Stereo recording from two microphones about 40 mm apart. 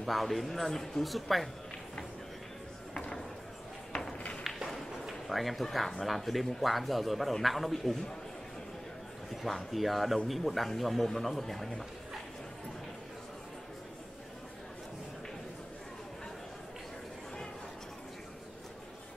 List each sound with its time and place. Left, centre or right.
0.0 s speech: centre
2.9 s a sound: left
5.0 s speech: centre
9.3 s speech: centre